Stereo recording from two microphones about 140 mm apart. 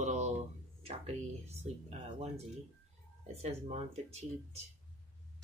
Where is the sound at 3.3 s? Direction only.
45° right (ahead or behind).